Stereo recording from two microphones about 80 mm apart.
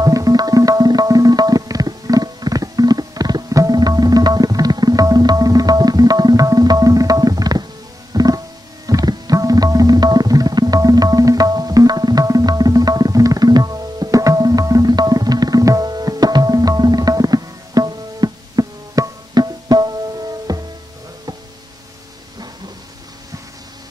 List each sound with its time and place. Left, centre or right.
0.0 s music: right